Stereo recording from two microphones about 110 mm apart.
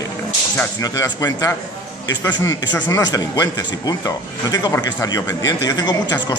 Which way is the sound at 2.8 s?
35° left (ahead or behind).